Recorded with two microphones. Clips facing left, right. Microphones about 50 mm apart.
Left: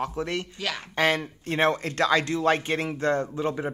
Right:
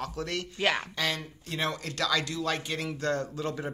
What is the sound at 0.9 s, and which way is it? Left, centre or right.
Speech, left.